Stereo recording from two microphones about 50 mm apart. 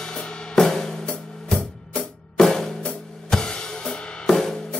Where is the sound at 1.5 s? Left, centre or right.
Centre.